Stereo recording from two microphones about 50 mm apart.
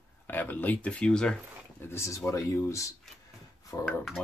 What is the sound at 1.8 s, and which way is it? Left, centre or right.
Speech, left.